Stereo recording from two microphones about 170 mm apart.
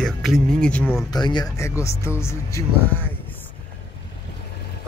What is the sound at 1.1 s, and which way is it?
Speech, 25° left (ahead or behind).